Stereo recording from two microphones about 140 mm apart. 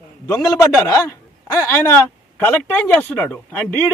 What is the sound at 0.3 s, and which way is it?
Speech, 20° left (ahead or behind).